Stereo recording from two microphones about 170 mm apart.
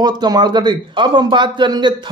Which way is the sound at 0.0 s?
25° right (ahead or behind).